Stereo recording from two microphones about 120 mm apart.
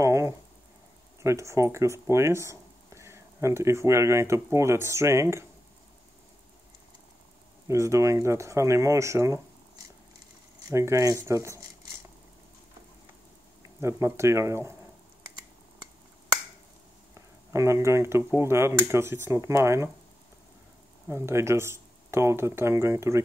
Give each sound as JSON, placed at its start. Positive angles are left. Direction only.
{"t": 0.0, "sound": "a sound", "side_deg": -25}
{"t": 1.2, "sound": "speech", "side_deg": -25}
{"t": 7.6, "sound": "speech", "side_deg": -25}
{"t": 10.7, "sound": "speech", "side_deg": -25}
{"t": 13.6, "sound": "speech", "side_deg": -25}
{"t": 17.1, "sound": "speech", "side_deg": -25}
{"t": 21.1, "sound": "speech", "side_deg": -20}